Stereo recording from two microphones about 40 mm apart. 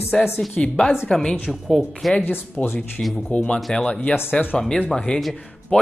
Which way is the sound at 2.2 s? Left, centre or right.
Left.